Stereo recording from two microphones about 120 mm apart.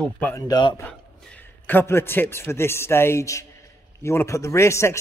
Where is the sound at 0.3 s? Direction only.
30° left (ahead or behind).